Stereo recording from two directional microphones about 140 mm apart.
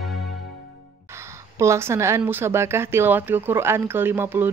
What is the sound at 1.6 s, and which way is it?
Speech, 20° right (ahead or behind).